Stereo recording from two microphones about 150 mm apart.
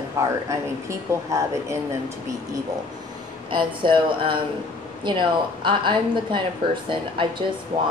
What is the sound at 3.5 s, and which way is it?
A woman's voice, 35° right (ahead or behind).